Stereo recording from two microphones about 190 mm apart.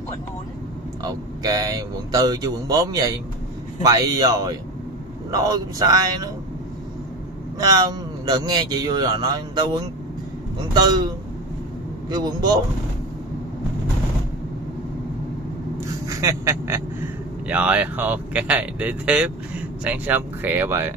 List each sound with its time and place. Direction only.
1.0 s a man's voice: 20° right (ahead or behind)
7.5 s a man's voice: 20° right (ahead or behind)
12.1 s a man's voice: 20° right (ahead or behind)
16.1 s speech: 15° right (ahead or behind)